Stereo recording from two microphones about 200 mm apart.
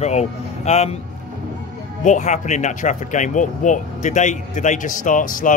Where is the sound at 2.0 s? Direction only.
35° left (ahead or behind).